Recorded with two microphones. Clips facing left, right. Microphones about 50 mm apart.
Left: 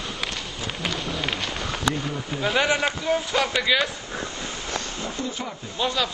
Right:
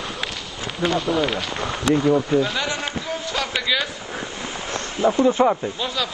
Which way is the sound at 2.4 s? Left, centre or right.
Left.